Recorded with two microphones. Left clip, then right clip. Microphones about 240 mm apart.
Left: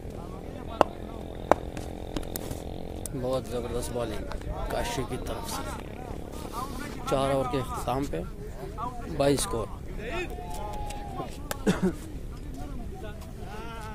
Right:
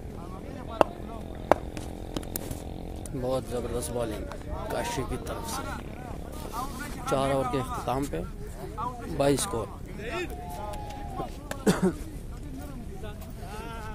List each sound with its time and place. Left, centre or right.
0.8 s a sound: centre
3.2 s a man's voice: centre
7.1 s a man's voice: centre
9.1 s a man's voice: centre
10.0 s vehicle: centre
11.6 s a sound: right